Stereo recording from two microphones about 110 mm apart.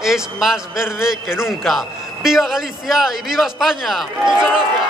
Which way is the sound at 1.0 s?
5° right (ahead or behind).